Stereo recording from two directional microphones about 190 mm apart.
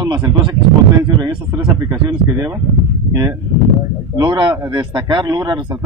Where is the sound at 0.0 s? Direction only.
20° right (ahead or behind).